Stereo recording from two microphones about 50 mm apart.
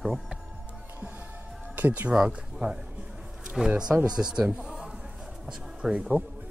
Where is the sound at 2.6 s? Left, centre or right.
Right.